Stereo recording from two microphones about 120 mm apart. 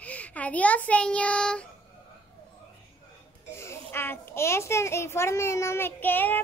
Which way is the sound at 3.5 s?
20° left (ahead or behind).